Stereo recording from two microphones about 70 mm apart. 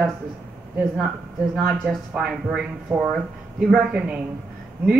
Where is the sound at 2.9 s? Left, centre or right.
Right.